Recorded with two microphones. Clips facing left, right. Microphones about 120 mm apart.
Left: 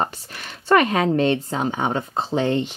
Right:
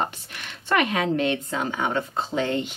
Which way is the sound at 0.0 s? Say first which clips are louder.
Left 3 dB; 40° left (ahead or behind).